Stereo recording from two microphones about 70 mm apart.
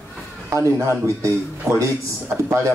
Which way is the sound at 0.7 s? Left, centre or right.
Right.